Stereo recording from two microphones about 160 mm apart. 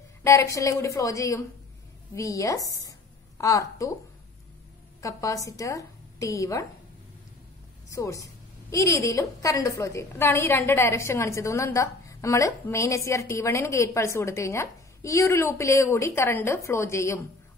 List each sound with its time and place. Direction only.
0.2 s a woman's voice: 15° left (ahead or behind)
5.0 s a woman's voice: 20° left (ahead or behind)
7.9 s a woman's voice: 20° left (ahead or behind)